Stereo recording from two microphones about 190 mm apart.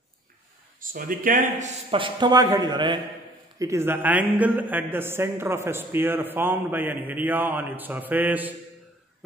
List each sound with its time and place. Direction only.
0.7 s speech: 45° right (ahead or behind)
1.9 s a man's voice: 25° right (ahead or behind); by 8.5 s 10° right (ahead or behind)